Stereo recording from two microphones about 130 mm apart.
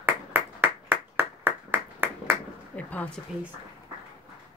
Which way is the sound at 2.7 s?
10° left (ahead or behind).